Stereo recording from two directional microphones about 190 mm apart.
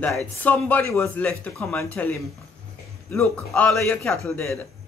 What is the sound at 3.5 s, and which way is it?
A man's voice, centre (ahead or behind).